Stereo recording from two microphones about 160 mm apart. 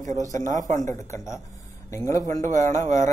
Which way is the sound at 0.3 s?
50° right (ahead or behind).